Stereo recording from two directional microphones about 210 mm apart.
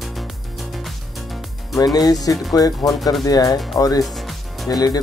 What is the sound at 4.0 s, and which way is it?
Music, centre (ahead or behind).